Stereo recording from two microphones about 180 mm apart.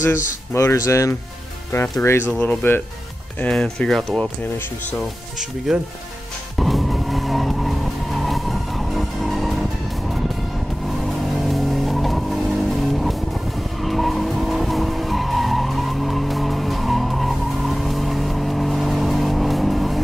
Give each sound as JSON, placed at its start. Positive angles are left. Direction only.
{"t": 0.6, "sound": "speech", "side_deg": 15}
{"t": 5.7, "sound": "speech", "side_deg": -5}
{"t": 6.6, "sound": "vehicle", "side_deg": 0}